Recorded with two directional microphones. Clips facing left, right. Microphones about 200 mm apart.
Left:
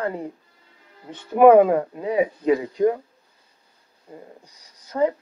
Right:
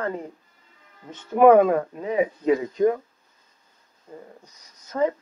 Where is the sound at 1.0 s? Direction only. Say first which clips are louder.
Left 2 dB; 35° left (ahead or behind).